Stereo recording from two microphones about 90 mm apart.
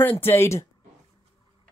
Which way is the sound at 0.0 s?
25° left (ahead or behind).